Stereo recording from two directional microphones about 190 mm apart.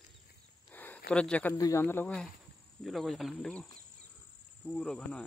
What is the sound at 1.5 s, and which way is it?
A man's voice, 15° left (ahead or behind).